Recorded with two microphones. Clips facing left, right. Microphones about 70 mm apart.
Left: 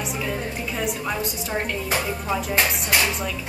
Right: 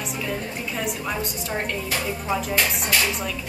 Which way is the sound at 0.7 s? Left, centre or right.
Centre.